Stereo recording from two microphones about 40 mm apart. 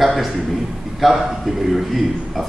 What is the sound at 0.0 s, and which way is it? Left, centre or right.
A man's voice, centre.